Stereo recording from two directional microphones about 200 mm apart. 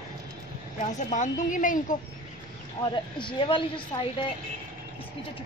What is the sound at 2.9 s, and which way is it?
A woman's voice, 25° left (ahead or behind).